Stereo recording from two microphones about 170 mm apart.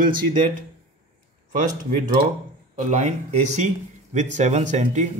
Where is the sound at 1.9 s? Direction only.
45° right (ahead or behind).